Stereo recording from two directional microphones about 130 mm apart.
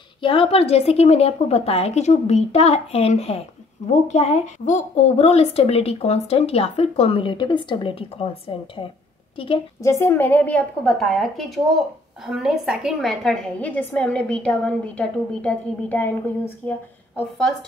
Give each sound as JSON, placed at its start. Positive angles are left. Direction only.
{"t": 0.2, "sound": "a woman's voice", "side_deg": 40}
{"t": 9.8, "sound": "a woman's voice", "side_deg": 20}
{"t": 17.4, "sound": "speech", "side_deg": 5}